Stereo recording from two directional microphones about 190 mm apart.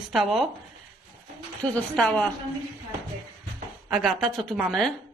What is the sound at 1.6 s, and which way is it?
Speech, 5° left (ahead or behind).